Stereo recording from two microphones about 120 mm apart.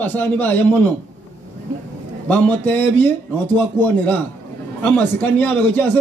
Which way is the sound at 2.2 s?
15° left (ahead or behind).